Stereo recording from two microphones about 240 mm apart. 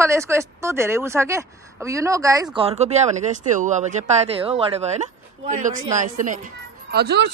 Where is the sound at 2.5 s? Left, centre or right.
Right.